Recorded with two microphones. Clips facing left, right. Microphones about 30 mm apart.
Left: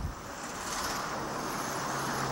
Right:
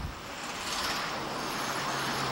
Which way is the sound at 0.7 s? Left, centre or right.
Right.